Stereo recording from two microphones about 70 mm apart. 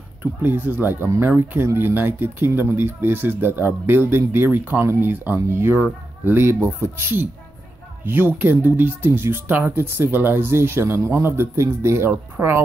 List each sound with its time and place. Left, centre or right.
0.2 s speech: right